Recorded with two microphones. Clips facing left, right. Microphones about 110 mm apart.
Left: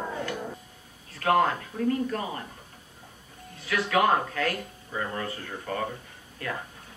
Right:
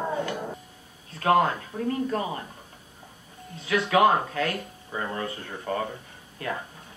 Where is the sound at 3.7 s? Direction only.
25° right (ahead or behind).